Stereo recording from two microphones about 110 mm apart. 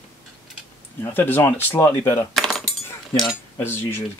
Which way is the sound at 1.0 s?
20° left (ahead or behind).